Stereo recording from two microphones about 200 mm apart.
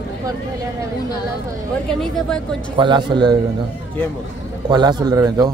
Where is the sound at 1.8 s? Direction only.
5° left (ahead or behind).